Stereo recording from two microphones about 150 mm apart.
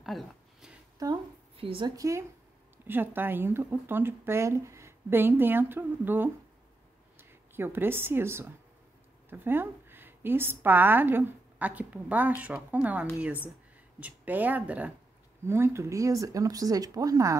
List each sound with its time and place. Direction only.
0.0 s a sound: centre (ahead or behind)
0.9 s a woman's voice: 25° right (ahead or behind)
1.6 s a woman's voice: 35° right (ahead or behind)
2.0 s a woman's voice: 20° right (ahead or behind)